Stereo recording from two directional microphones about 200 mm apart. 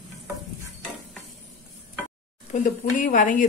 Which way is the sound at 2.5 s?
40° left (ahead or behind).